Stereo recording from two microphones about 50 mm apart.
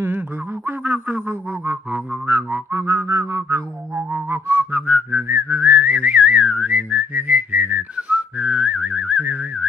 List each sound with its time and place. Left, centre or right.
0.7 s a sound: right
1.9 s music: right
2.7 s music: right
4.3 s whistling: right
4.6 s whistling: right
5.1 s whistling: right
5.8 s whistling: right